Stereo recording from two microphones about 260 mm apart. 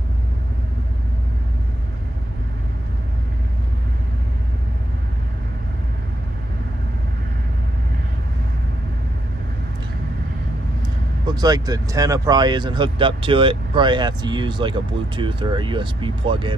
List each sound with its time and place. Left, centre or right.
11.2 s speech: centre